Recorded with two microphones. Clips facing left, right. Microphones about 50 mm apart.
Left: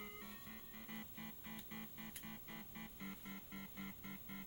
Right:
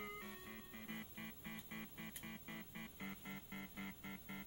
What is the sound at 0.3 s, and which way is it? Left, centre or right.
Music, right.